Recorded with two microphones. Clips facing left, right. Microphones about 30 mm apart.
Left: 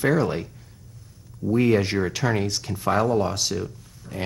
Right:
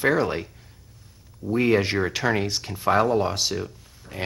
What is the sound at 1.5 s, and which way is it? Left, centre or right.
Speech, centre.